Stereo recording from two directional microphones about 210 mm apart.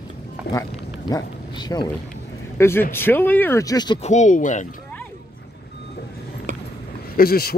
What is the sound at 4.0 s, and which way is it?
Speech, 35° left (ahead or behind).